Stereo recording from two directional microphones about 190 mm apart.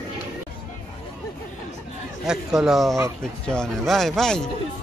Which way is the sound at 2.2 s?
Centre (ahead or behind).